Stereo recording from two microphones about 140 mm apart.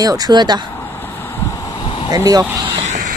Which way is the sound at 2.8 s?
60° right (ahead or behind).